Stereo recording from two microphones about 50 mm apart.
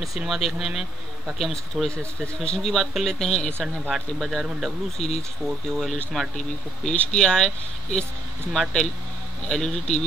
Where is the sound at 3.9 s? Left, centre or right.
Centre.